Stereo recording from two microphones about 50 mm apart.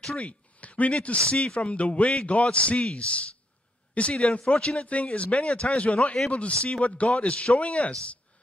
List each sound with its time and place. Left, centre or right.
0.2 s speech: left